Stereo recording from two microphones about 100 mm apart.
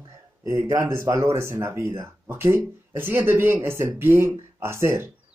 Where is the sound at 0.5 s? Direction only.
30° right (ahead or behind).